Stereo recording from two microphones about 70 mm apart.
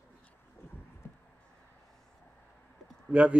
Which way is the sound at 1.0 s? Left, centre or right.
Left.